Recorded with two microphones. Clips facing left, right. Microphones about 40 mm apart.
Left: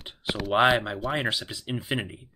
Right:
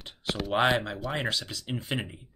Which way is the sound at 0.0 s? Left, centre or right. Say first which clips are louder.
Left 2 dB; centre.